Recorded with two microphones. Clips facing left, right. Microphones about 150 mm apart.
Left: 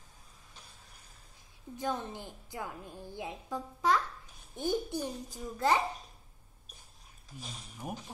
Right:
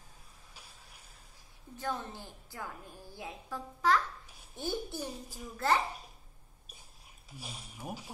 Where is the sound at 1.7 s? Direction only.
15° left (ahead or behind).